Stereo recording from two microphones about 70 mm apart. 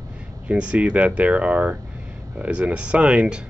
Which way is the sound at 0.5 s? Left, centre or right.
Centre.